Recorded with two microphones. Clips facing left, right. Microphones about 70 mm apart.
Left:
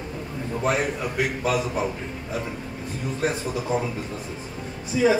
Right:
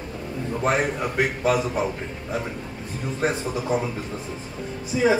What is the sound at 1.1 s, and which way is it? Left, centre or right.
Speech, right.